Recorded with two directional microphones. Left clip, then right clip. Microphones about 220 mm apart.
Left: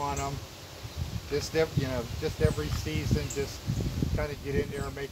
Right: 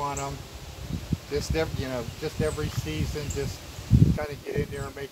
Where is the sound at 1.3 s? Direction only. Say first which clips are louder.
Left 1 dB; 25° right (ahead or behind).